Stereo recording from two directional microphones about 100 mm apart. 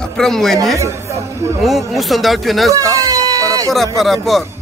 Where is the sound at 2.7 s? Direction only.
35° right (ahead or behind).